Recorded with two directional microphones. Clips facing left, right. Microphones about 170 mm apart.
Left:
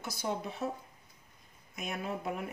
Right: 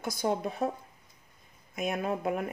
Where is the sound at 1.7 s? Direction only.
50° right (ahead or behind).